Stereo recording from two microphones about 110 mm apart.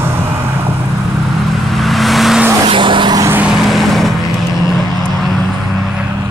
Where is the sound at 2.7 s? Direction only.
50° right (ahead or behind).